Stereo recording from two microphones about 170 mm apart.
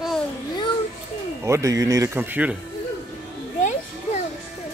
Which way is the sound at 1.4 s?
20° right (ahead or behind).